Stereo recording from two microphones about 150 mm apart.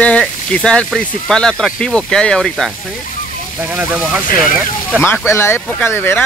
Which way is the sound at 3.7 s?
10° right (ahead or behind).